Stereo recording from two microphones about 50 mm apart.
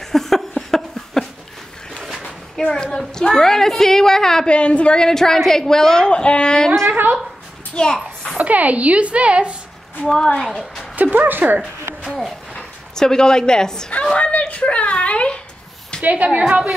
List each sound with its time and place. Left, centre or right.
0.0 s a sound: centre
2.7 s a woman's voice: centre
4.5 s a woman's voice: left
6.9 s a woman's voice: right
7.7 s children playing: centre
8.4 s speech: right
10.0 s a woman's voice: centre
11.0 s speech: right
12.9 s a woman's voice: centre
14.1 s speech: left
16.0 s a woman's voice: right